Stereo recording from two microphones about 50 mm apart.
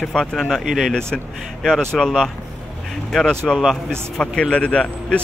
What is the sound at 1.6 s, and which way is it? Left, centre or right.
Speech, centre.